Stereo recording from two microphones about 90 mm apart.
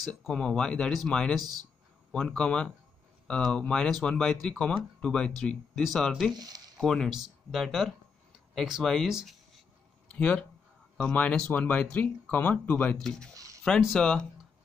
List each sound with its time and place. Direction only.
0.1 s speech: 10° left (ahead or behind)
6.3 s speech: 45° right (ahead or behind)
6.8 s speech: 5° left (ahead or behind)
10.1 s speech: 15° left (ahead or behind)
13.7 s speech: 10° left (ahead or behind)